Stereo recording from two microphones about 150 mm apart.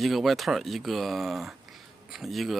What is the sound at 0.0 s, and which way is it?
A woman's voice, centre (ahead or behind).